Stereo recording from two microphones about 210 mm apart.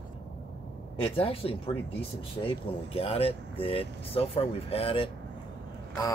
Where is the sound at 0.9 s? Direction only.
25° left (ahead or behind).